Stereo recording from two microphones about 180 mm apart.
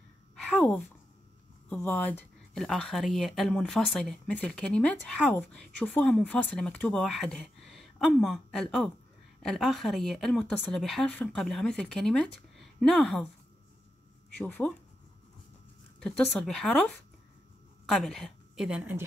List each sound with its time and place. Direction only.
0.5 s speech: 10° left (ahead or behind)
14.4 s speech: 10° left (ahead or behind)
16.0 s speech: 5° left (ahead or behind)
17.8 s a woman's voice: centre (ahead or behind)